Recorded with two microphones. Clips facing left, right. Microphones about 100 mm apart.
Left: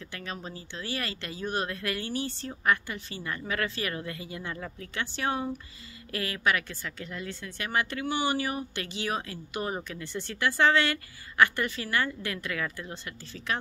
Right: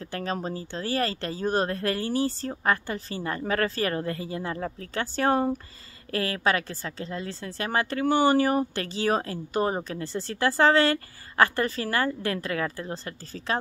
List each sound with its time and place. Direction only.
0.0 s a woman's voice: 35° right (ahead or behind)